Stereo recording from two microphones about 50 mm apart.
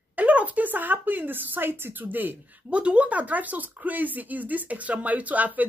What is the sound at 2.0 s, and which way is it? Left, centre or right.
Speech, right.